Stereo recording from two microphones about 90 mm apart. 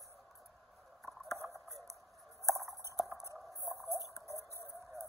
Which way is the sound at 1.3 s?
35° right (ahead or behind).